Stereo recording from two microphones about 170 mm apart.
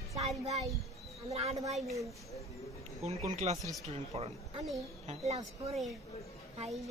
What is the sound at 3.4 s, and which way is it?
A woman's voice, 45° right (ahead or behind).